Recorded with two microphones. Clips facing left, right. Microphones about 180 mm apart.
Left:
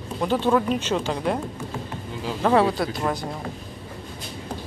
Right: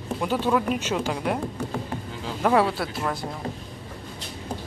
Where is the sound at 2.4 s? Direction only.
5° right (ahead or behind).